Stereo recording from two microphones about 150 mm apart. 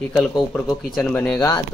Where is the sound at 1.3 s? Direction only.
25° left (ahead or behind).